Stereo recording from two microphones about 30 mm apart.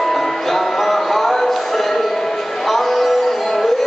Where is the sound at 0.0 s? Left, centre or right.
Centre.